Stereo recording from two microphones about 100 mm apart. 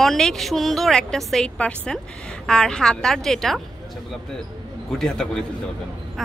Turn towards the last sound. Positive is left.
turn(degrees=5)  # may be behind; listen again after turning